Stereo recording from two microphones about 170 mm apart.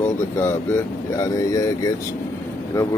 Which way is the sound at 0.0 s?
15° left (ahead or behind).